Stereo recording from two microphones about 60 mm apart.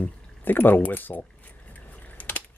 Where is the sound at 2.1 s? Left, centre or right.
Left.